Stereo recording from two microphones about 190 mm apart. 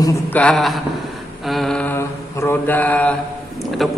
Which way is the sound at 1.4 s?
Centre (ahead or behind).